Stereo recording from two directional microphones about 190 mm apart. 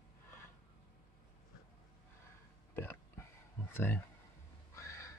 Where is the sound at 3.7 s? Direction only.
10° left (ahead or behind).